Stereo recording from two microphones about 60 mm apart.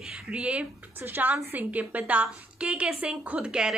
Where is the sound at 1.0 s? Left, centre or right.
Right; by 3.7 s centre.